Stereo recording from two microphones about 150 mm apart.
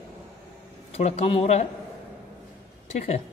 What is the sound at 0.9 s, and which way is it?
Speech, 45° left (ahead or behind).